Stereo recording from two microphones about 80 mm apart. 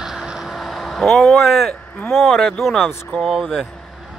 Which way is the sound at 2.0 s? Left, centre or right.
Centre.